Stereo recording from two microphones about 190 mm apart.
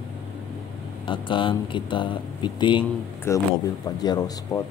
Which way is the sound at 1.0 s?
25° left (ahead or behind).